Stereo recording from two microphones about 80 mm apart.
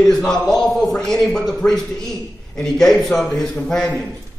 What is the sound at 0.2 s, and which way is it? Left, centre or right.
A man's voice, centre.